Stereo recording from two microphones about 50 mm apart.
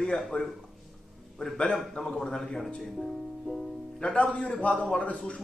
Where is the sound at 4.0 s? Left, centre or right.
Left.